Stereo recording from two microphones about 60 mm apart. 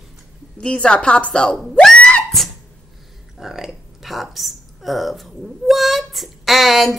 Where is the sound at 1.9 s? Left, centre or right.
Left.